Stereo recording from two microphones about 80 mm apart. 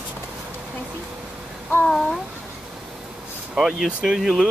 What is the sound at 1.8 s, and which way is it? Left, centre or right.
Speech, centre.